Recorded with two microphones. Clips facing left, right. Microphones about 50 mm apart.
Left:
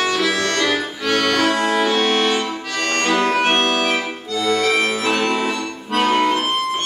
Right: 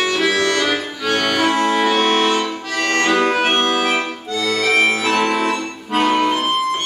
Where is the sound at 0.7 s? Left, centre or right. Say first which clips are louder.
Even; centre.